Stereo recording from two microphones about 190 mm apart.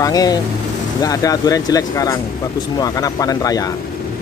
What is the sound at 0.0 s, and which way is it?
Speech, 20° left (ahead or behind).